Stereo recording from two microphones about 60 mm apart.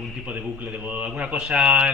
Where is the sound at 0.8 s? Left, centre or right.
Right.